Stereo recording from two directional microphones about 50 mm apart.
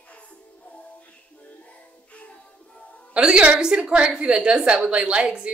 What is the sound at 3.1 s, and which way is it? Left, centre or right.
A woman's voice, centre.